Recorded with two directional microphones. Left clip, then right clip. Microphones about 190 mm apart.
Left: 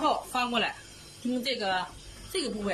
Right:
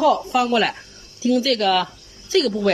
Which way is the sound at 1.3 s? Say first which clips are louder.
Right 11 dB; 50° right (ahead or behind).